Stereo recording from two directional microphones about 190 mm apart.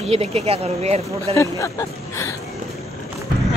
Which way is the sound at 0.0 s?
35° right (ahead or behind).